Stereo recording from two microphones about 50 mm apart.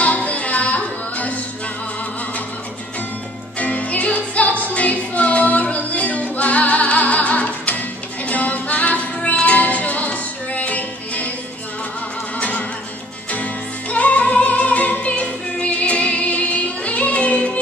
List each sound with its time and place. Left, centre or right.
0.0 s music: left
3.5 s music: left
12.4 s music: left